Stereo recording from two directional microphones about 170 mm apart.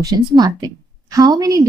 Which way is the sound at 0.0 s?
25° right (ahead or behind).